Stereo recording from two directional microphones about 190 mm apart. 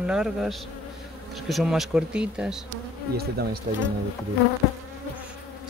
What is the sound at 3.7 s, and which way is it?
Speech, 40° right (ahead or behind).